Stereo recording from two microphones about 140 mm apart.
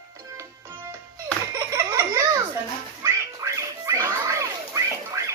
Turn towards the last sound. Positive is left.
turn(degrees=-20)  # may be behind; listen again after turning